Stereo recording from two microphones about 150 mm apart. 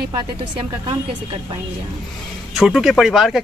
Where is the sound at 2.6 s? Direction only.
Centre (ahead or behind).